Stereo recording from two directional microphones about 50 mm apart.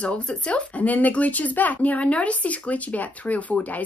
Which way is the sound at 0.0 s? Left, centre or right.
Left.